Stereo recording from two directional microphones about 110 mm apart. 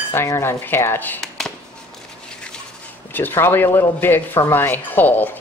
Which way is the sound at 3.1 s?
20° left (ahead or behind).